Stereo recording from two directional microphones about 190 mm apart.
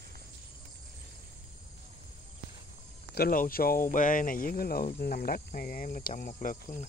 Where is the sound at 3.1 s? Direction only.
50° left (ahead or behind).